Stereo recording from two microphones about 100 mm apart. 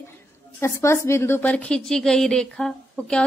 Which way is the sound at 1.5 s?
10° left (ahead or behind).